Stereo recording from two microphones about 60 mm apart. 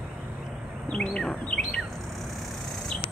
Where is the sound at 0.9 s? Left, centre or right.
Centre.